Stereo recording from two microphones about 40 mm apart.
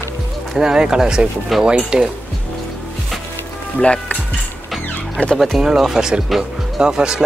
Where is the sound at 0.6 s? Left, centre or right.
Right.